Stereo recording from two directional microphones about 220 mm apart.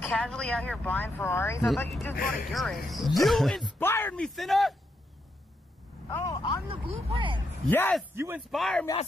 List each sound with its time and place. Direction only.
0.0 s speech: 5° left (ahead or behind)
1.7 s speech: centre (ahead or behind)
6.0 s speech: 15° left (ahead or behind)
6.7 s speech: 25° right (ahead or behind)
7.7 s speech: 10° left (ahead or behind)
8.1 s speech: 10° right (ahead or behind)
8.5 s speech: centre (ahead or behind)